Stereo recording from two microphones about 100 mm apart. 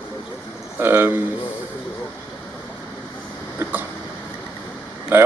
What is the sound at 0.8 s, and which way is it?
Speech, 20° right (ahead or behind).